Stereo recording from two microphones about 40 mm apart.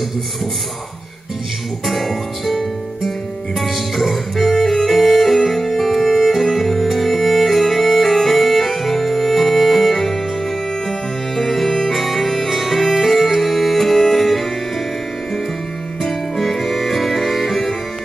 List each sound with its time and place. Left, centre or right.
1.9 s music: centre
16.1 s music: centre